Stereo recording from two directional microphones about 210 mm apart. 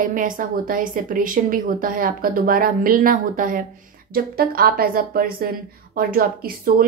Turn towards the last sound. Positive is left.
turn(degrees=-45)  # may be behind; listen again after turning